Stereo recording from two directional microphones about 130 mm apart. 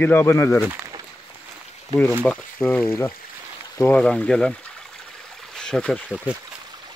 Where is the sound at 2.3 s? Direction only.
15° left (ahead or behind).